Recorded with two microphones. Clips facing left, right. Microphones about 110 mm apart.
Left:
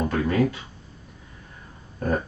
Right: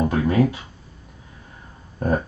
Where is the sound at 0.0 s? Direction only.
15° right (ahead or behind).